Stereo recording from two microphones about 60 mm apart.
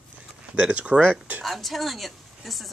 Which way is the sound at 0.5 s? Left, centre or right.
Centre.